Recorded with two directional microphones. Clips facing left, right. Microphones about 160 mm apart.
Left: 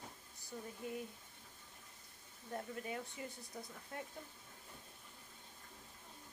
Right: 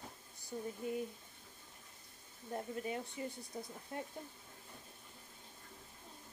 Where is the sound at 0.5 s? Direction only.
30° right (ahead or behind).